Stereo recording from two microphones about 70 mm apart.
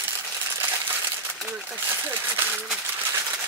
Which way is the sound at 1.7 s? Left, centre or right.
Right.